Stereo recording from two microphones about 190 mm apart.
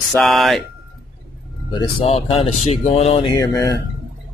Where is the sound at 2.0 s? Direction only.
30° left (ahead or behind).